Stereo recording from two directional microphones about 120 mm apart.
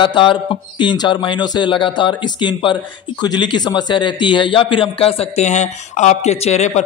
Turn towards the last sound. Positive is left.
turn(degrees=70)  # may be behind; listen again after turning